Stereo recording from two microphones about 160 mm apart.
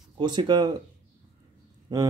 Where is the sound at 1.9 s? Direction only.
25° right (ahead or behind).